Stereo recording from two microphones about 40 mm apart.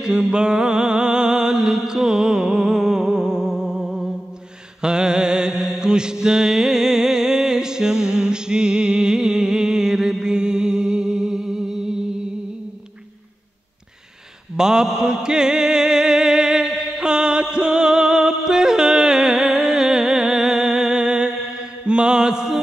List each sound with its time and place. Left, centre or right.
0.0 s a sound: right
4.8 s mantra: centre
14.6 s mantra: centre